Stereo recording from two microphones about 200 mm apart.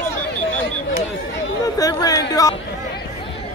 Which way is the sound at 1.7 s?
15° left (ahead or behind).